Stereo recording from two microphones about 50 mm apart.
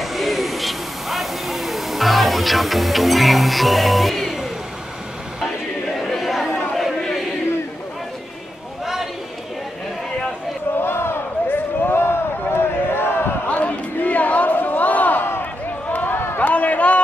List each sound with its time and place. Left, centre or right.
0.0 s vehicle: centre
5.9 s chatter: centre
6.8 s chant: centre
10.8 s a sound: left
13.5 s a sound: left
15.9 s run: left